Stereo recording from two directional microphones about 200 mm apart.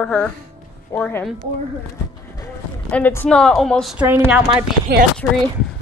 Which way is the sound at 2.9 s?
10° left (ahead or behind).